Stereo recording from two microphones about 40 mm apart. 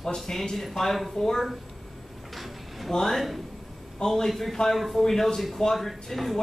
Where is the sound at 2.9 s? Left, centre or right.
Centre.